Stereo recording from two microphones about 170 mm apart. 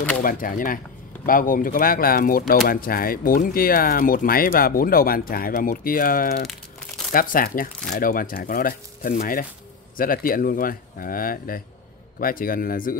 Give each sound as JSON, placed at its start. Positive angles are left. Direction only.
{"t": 0.2, "sound": "speech", "side_deg": 55}